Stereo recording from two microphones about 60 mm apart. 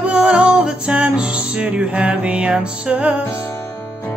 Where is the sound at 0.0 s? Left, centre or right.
Centre.